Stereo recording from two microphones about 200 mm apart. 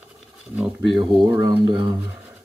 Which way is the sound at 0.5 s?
5° right (ahead or behind).